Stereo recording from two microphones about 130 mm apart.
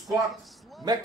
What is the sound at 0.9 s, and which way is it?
Speech, 30° right (ahead or behind).